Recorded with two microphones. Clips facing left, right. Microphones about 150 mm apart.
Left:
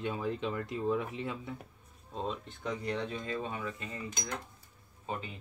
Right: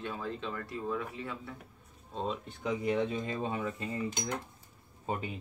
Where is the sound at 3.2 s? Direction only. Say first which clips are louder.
Right 3 dB; 25° right (ahead or behind).